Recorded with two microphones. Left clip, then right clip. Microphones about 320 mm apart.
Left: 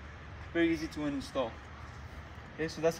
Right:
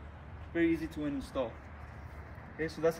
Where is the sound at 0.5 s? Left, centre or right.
Centre.